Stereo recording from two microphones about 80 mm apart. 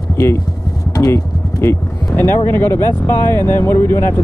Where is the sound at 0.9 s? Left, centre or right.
Left.